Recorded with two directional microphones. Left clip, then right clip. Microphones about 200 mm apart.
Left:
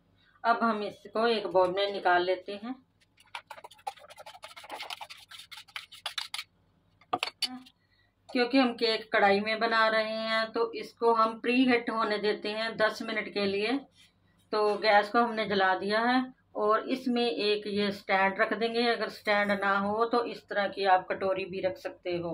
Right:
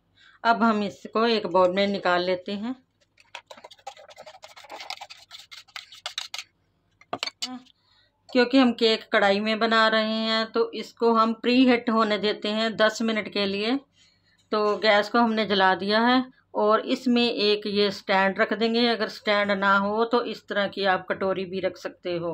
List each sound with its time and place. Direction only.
0.4 s speech: 50° right (ahead or behind)
8.3 s speech: 50° right (ahead or behind)